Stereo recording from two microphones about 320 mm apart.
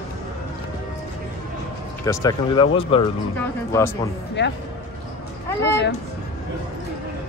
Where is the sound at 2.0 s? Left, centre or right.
Centre.